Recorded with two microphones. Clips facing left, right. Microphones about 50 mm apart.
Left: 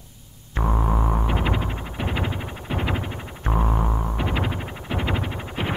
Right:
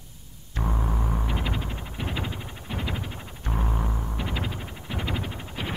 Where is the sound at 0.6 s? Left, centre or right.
Left.